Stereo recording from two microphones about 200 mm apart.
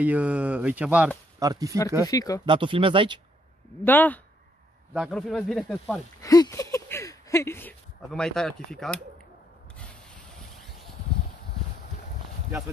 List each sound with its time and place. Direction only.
0.0 s speech: 5° right (ahead or behind)
1.4 s speech: 15° right (ahead or behind)
2.0 s speech: 15° left (ahead or behind)
2.4 s speech: 25° right (ahead or behind)
3.8 s speech: 10° left (ahead or behind)
6.2 s speech: 15° left (ahead or behind)